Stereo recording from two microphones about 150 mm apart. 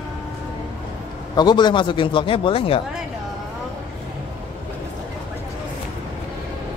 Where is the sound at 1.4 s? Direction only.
30° left (ahead or behind).